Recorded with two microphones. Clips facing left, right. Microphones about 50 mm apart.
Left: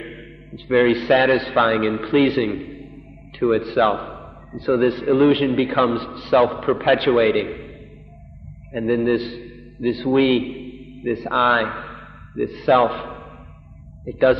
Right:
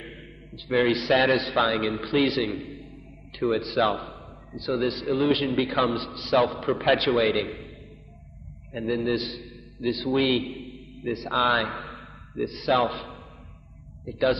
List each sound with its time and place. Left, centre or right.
0.0 s a sound: left
0.7 s a man's voice: centre
8.7 s a man's voice: left